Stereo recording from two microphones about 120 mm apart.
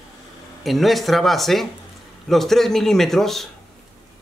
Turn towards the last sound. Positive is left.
turn(degrees=0)  # may be behind; listen again after turning